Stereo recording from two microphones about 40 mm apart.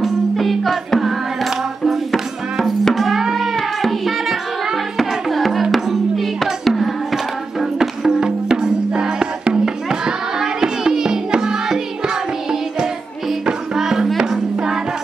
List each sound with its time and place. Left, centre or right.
0.0 s music: centre
8.1 s music: centre
13.5 s music: centre